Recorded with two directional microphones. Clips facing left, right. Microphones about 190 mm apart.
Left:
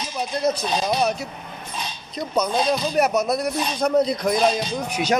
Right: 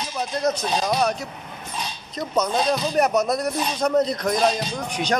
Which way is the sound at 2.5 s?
5° left (ahead or behind).